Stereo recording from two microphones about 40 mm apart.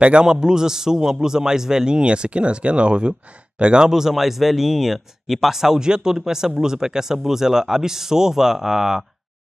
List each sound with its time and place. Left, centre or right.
0.0 s a man's voice: right
3.8 s speech: centre